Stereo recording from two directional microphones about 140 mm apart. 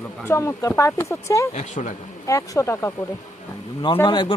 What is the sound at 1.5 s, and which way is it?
Speech, 60° left (ahead or behind).